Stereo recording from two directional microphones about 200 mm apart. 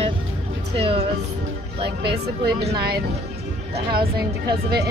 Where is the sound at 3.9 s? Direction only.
50° right (ahead or behind).